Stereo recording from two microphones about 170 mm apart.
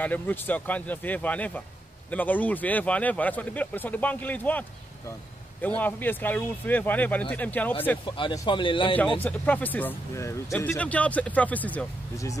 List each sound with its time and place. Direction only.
0.0 s speech: 10° left (ahead or behind)
8.0 s speech: 30° left (ahead or behind)
9.2 s speech: 10° left (ahead or behind)